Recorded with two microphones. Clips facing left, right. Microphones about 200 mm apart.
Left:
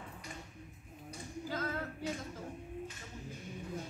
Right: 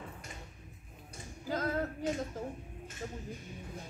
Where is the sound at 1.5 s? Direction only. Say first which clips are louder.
Right 6 dB; 40° right (ahead or behind).